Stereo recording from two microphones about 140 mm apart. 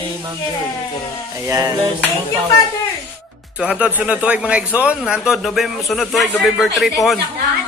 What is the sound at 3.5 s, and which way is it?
Speech, 5° right (ahead or behind).